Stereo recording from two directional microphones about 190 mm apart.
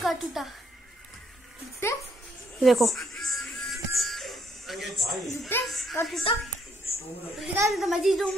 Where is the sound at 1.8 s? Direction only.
15° left (ahead or behind).